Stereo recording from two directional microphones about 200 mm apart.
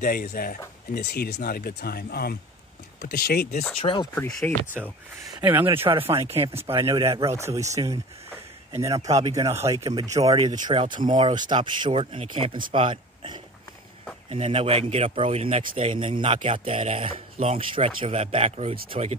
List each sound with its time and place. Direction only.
0.0 s speech: 50° left (ahead or behind)
3.8 s speech: 25° left (ahead or behind)
4.1 s speech: 10° left (ahead or behind); by 5.9 s 10° right (ahead or behind)
5.9 s speech: 25° right (ahead or behind)
6.8 s speech: 15° right (ahead or behind); by 19.1 s 30° right (ahead or behind)